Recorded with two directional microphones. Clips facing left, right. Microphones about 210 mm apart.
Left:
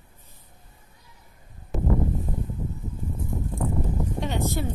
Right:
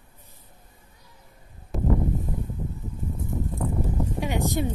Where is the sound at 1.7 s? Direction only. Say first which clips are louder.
Even; centre (ahead or behind).